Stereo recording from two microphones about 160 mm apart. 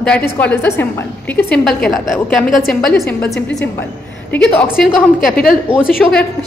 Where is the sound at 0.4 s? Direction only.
10° left (ahead or behind).